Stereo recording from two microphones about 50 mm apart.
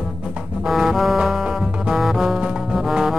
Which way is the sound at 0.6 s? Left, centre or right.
Centre.